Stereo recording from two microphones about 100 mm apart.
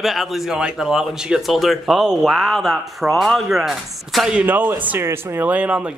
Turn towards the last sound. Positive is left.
turn(degrees=-15)  # may be behind; listen again after turning